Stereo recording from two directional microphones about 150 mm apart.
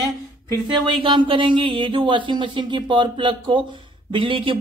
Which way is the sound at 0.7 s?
35° right (ahead or behind).